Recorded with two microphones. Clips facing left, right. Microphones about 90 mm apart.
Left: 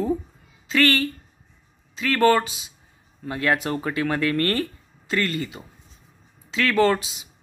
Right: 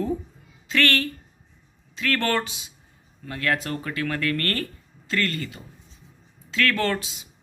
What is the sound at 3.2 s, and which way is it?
Speech, 20° left (ahead or behind).